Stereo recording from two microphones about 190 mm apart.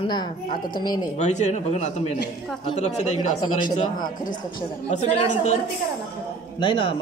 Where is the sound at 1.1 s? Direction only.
35° left (ahead or behind).